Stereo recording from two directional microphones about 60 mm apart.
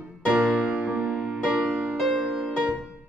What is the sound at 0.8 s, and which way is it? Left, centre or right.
Music, right.